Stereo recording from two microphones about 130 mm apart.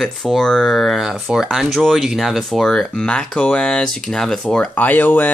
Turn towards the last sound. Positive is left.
turn(degrees=15)  # may be behind; listen again after turning